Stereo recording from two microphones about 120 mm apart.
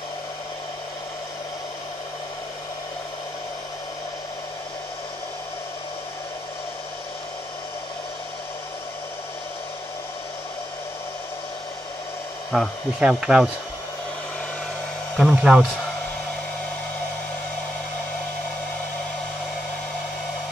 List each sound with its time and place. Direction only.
12.4 s speech: centre (ahead or behind)
15.1 s speech: 5° right (ahead or behind)